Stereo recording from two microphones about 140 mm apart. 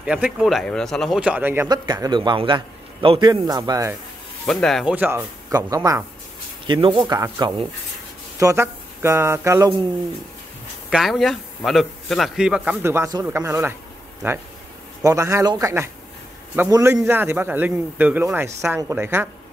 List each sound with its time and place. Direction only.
0.0 s a man's voice: 5° right (ahead or behind)
1.7 s a man's voice: 30° right (ahead or behind)
4.5 s a man's voice: 5° left (ahead or behind)
4.9 s speech: 15° right (ahead or behind)
5.5 s speech: 25° right (ahead or behind)
6.7 s a man's voice: 40° right (ahead or behind)
8.4 s speech: 20° right (ahead or behind)
10.9 s a man's voice: centre (ahead or behind)
12.8 s speech: 15° right (ahead or behind)
15.0 s speech: 20° right (ahead or behind)